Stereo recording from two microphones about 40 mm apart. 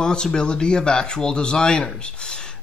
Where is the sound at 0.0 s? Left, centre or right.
Centre.